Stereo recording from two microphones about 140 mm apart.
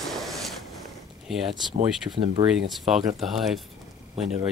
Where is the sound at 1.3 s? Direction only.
Centre (ahead or behind).